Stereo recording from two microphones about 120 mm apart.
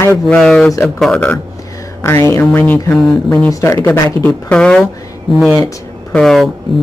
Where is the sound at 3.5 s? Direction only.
25° left (ahead or behind).